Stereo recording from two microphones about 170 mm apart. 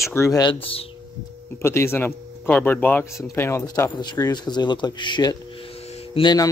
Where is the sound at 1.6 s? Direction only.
15° left (ahead or behind).